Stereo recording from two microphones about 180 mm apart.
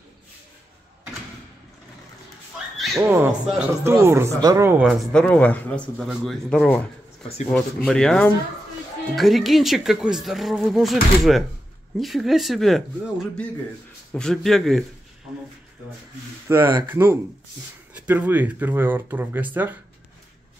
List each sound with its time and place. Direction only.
3.0 s speech: 10° right (ahead or behind)
5.1 s speech: 5° left (ahead or behind)
16.4 s speech: 10° right (ahead or behind)